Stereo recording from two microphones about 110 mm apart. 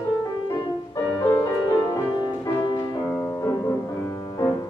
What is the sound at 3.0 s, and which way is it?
Music, 20° left (ahead or behind).